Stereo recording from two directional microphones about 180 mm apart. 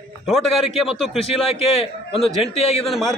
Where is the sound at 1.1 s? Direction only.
35° left (ahead or behind).